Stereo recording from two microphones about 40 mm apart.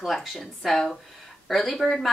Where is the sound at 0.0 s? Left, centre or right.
Centre.